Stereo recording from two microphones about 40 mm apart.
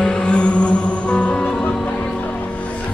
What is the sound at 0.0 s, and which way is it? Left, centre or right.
Music, left.